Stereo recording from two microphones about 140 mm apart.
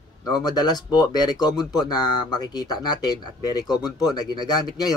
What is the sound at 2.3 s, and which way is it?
Speech, 30° left (ahead or behind).